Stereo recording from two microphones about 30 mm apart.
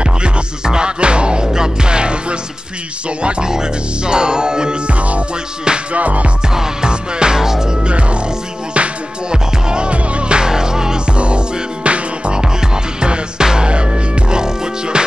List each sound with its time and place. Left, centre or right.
0.7 s music: right
3.2 s speech: right
3.4 s music: right
4.8 s music: right
6.5 s music: centre
6.9 s music: right
7.4 s music: centre
7.8 s music: right
9.3 s music: right
10.5 s music: right
11.1 s music: right
12.4 s music: right